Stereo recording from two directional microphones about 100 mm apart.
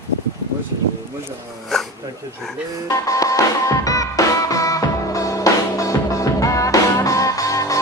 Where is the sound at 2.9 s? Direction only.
35° left (ahead or behind).